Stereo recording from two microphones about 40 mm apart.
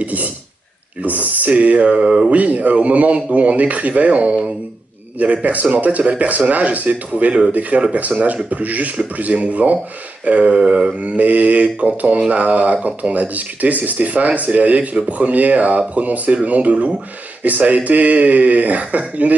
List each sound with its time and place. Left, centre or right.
0.0 s speech: right
2.3 s speech: right